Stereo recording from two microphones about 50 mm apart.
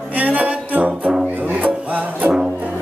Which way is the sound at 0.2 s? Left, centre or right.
Right.